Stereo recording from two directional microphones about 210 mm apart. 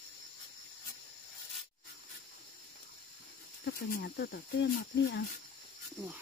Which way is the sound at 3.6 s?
50° left (ahead or behind).